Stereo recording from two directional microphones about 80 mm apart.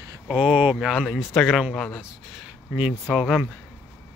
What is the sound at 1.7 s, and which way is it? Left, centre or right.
Speech, centre.